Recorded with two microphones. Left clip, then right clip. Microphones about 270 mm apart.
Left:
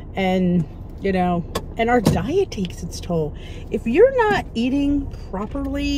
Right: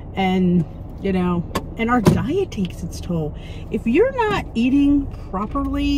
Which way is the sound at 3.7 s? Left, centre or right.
Centre.